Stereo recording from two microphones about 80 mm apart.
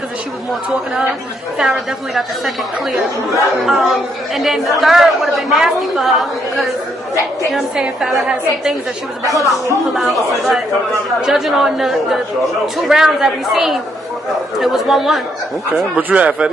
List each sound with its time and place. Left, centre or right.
1.6 s a woman's voice: centre
9.5 s a woman's voice: centre
16.0 s speech: centre